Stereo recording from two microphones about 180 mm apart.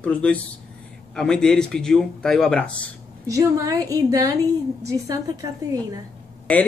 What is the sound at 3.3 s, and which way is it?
A woman's voice, 20° right (ahead or behind).